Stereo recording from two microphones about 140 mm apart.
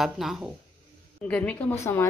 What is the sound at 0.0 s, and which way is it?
Speech, centre (ahead or behind).